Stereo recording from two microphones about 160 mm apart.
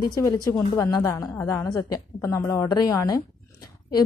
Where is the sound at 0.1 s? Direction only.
25° left (ahead or behind).